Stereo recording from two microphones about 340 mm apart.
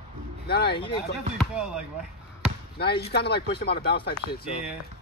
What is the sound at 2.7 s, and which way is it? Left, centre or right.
Speech, left.